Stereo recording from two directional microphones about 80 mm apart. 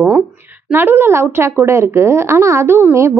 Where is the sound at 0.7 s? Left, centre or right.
Right.